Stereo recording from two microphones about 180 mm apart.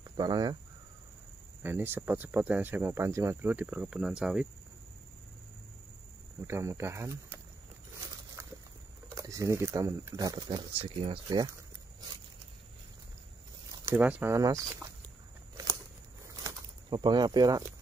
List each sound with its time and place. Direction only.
0.2 s speech: 20° right (ahead or behind)
1.6 s speech: 10° right (ahead or behind)
6.4 s speech: 15° right (ahead or behind)
9.1 s speech: 20° right (ahead or behind)
13.8 s speech: 10° right (ahead or behind)
15.5 s a sound: 20° right (ahead or behind)
16.9 s speech: 25° right (ahead or behind)